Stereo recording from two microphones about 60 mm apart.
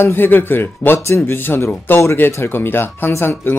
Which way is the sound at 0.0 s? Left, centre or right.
Left.